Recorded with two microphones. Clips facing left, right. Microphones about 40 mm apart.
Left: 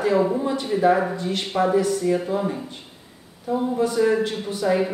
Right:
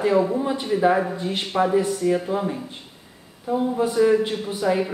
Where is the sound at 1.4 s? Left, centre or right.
Centre.